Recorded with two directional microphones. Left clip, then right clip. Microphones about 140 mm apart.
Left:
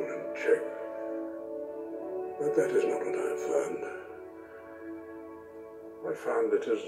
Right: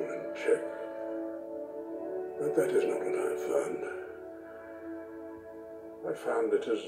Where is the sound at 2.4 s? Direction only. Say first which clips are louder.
Left 1 dB; centre (ahead or behind).